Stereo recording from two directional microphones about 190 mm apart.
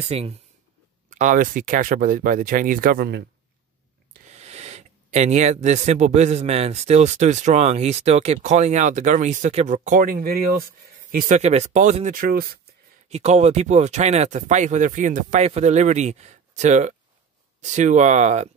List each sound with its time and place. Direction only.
0.1 s speech: 30° right (ahead or behind); by 3.3 s 55° right (ahead or behind)
4.3 s speech: 35° right (ahead or behind); by 12.5 s 50° right (ahead or behind)
13.1 s speech: 35° right (ahead or behind)